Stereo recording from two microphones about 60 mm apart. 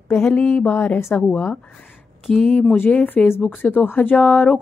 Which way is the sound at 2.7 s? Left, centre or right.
Left.